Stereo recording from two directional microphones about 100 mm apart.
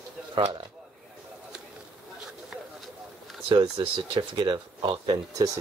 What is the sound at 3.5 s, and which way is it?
Speech, 65° right (ahead or behind).